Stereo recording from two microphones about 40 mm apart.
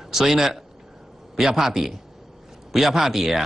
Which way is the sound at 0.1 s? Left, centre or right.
Centre.